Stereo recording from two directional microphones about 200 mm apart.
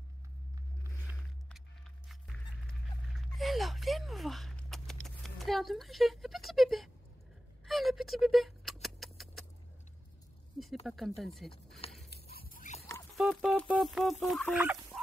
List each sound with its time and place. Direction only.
2.0 s a sound: centre (ahead or behind)
7.6 s speech: centre (ahead or behind)
8.8 s rodents: centre (ahead or behind)
10.9 s speech: centre (ahead or behind)
12.1 s a sound: 50° left (ahead or behind)
13.2 s speech: centre (ahead or behind)